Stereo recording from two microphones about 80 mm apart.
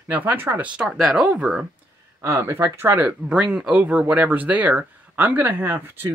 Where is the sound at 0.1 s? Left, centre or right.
Right.